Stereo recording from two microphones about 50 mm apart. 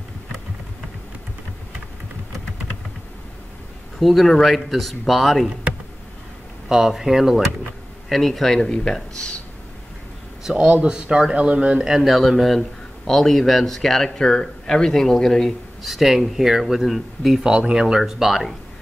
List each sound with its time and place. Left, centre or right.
4.0 s speech: centre
6.7 s speech: centre
10.5 s speech: right
11.8 s speech: centre
12.1 s speech: centre
15.8 s speech: centre
17.4 s speech: centre